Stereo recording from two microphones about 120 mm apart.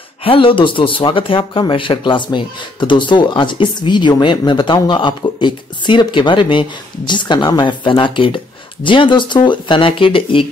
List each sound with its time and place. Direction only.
0.2 s speech: 50° left (ahead or behind)